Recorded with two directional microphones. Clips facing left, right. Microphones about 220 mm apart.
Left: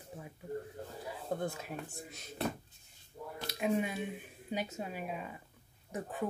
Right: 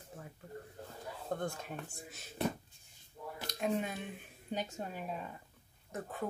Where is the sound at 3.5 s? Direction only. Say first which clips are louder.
Left 2 dB; 10° left (ahead or behind).